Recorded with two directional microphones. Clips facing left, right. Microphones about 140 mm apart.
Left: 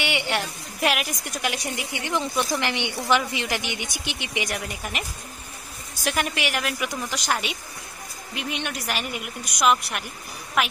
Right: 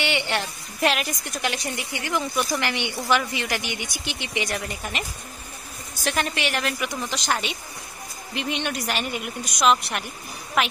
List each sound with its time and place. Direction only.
0.0 s a woman's voice: 10° left (ahead or behind)
6.0 s a woman's voice: 10° left (ahead or behind)